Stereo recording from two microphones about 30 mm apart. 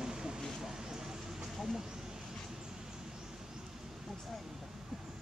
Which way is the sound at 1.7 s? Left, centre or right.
Centre.